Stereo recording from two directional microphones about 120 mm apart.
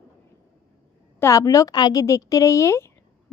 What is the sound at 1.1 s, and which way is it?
A woman's voice, 25° left (ahead or behind).